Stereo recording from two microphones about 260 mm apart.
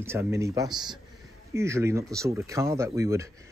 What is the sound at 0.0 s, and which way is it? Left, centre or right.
Speech, centre.